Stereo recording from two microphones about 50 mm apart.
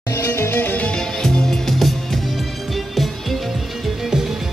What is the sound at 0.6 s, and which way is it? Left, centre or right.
Music, left.